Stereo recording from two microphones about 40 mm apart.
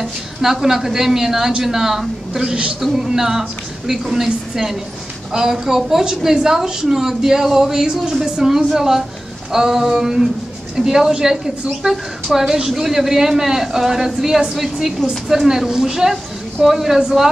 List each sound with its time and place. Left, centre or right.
0.0 s speech: centre